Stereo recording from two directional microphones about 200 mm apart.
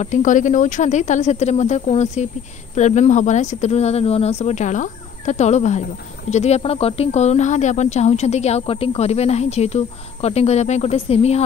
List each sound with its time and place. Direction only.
0.0 s speech: 40° left (ahead or behind)